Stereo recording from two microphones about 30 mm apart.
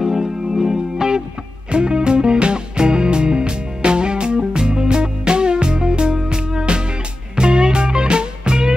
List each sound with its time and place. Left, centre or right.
0.0 s music: centre